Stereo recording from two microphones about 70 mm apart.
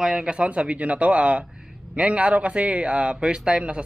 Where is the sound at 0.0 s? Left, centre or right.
Centre.